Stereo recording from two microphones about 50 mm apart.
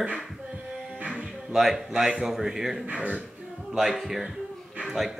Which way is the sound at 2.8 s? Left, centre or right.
Right.